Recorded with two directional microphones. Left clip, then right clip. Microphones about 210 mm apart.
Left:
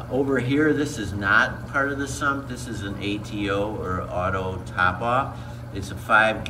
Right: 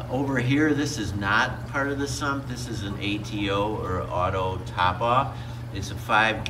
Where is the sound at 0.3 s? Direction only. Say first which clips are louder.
Left 1 dB; centre (ahead or behind).